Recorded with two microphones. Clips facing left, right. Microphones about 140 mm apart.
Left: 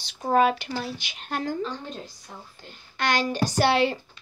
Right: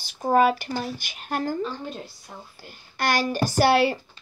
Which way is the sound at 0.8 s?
50° right (ahead or behind).